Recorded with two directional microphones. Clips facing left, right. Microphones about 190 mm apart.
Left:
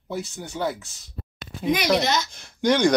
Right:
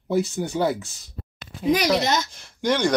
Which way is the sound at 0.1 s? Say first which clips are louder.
Right 8 dB; 10° right (ahead or behind).